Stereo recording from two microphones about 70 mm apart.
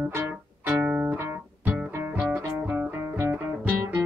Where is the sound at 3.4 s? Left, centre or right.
Centre.